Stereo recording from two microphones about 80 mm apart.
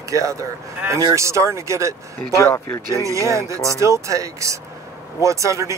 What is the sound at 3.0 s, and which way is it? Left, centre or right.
Speech, right.